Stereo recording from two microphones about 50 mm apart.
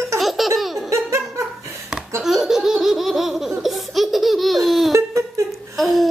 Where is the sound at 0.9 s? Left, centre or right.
Right.